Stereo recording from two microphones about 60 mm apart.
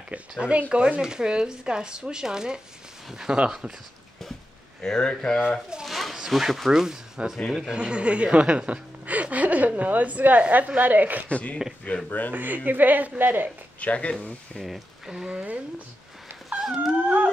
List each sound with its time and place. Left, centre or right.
0.4 s speech: right
4.8 s speech: centre
5.9 s a sound: centre
6.1 s speech: centre
9.0 s a woman's voice: right
11.2 s speech: left
12.3 s a woman's voice: right
13.7 s speech: left
14.6 s speech: centre
15.3 s speech: right
16.4 s dog: centre